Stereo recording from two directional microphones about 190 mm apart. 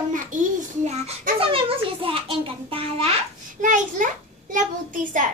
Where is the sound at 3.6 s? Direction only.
45° right (ahead or behind).